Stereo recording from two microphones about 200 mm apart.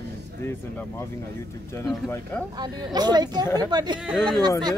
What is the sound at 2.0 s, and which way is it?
Speech, 10° left (ahead or behind).